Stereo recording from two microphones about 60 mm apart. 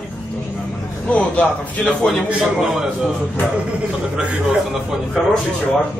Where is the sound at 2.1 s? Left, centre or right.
Centre.